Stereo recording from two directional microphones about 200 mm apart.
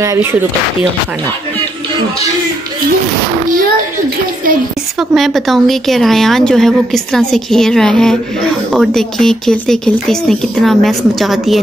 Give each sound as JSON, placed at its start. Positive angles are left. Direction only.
{"t": 0.0, "sound": "speech", "side_deg": -15}
{"t": 5.1, "sound": "speech", "side_deg": 0}